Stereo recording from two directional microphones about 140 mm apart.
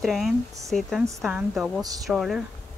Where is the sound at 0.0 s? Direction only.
Centre (ahead or behind).